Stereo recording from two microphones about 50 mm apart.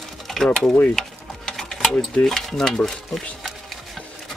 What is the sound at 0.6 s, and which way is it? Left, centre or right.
Stir, left.